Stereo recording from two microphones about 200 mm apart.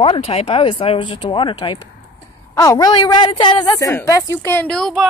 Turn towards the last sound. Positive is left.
turn(degrees=0)  # may be behind; listen again after turning